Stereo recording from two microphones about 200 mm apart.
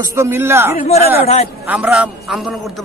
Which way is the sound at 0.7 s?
35° left (ahead or behind).